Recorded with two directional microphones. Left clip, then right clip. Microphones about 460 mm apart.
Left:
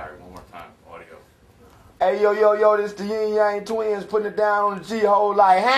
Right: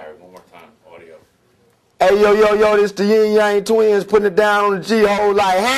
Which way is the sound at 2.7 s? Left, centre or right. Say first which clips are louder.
Right 8 dB; right.